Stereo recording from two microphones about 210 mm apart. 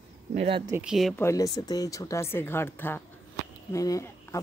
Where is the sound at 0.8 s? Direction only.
Centre (ahead or behind).